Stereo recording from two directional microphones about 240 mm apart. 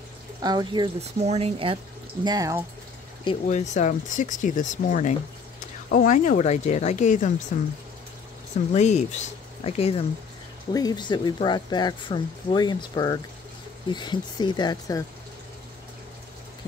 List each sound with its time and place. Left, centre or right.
0.4 s speech: centre
3.3 s speech: left
8.5 s speech: left